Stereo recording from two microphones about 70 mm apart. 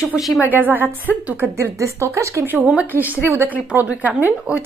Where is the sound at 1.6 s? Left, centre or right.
Right.